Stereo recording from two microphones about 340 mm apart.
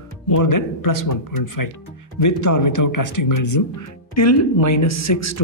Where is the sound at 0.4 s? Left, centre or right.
Left.